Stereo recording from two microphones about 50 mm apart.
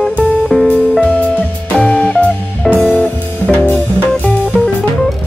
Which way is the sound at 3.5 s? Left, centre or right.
Left.